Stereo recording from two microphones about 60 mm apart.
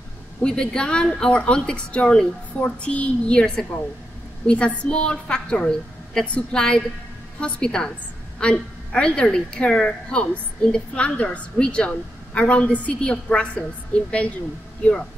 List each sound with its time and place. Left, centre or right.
0.4 s a woman's voice: centre